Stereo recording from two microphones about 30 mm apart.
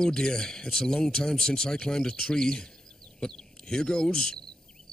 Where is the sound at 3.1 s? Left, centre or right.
Left.